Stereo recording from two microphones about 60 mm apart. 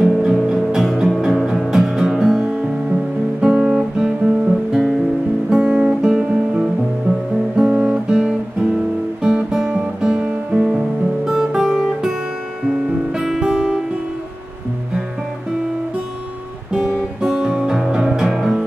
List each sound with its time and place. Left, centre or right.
0.0 s music: centre
4.7 s guitar: centre
5.5 s guitar: centre
11.2 s guitar: centre
13.1 s music: centre
17.2 s music: centre